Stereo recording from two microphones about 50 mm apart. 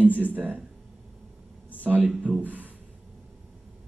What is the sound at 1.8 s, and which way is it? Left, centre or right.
Speech, right.